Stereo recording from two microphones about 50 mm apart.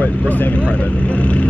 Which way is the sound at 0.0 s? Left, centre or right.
Left.